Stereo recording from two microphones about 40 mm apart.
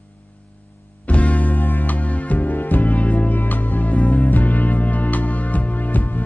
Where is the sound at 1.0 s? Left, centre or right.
Left.